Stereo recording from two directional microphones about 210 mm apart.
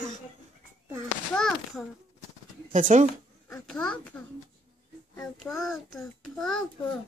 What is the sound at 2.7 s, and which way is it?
Speech, 40° right (ahead or behind).